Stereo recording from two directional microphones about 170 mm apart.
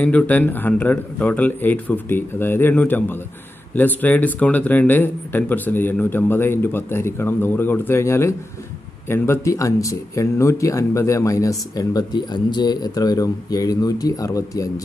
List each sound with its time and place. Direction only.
0.0 s speech: 10° left (ahead or behind)